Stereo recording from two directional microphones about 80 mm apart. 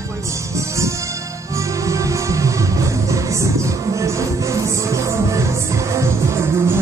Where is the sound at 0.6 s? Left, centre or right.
Right.